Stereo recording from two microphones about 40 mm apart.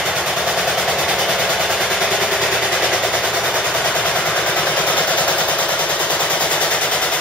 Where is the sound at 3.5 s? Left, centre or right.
Left.